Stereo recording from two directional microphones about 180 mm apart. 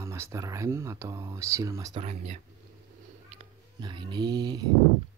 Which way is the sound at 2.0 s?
35° right (ahead or behind).